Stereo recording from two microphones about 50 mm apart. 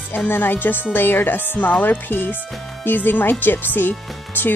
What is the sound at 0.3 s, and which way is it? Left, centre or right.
A woman's voice, left.